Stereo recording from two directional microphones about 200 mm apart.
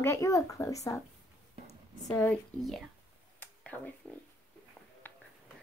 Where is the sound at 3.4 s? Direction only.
10° left (ahead or behind).